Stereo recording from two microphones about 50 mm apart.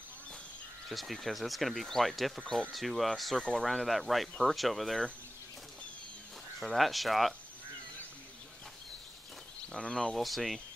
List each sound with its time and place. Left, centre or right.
0.8 s speech: centre
6.6 s speech: centre
9.8 s speech: centre
10.1 s speech: centre